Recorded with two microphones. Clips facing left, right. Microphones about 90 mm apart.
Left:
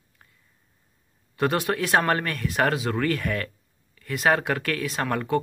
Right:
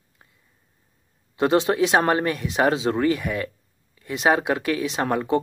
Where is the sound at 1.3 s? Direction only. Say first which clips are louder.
Right 4 dB; 20° right (ahead or behind).